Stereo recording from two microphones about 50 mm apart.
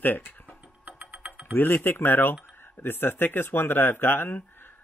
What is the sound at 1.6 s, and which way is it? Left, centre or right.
Speech, left.